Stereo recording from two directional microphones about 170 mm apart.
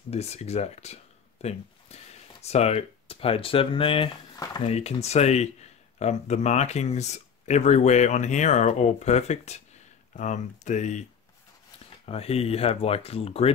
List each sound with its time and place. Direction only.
0.1 s speech: 40° left (ahead or behind)
12.1 s speech: 35° left (ahead or behind)